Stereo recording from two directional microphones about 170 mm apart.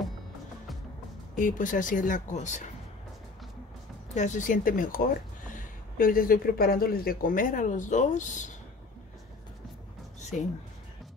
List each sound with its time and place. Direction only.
1.3 s speech: 50° left (ahead or behind)
4.1 s speech: 45° left (ahead or behind)